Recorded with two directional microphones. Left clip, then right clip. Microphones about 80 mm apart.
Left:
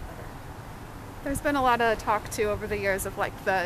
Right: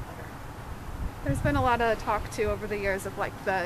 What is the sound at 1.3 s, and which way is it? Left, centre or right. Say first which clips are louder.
Speech: left 2 dB; left.